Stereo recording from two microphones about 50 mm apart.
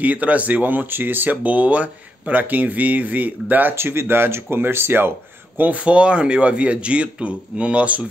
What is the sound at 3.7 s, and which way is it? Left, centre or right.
Speech, right.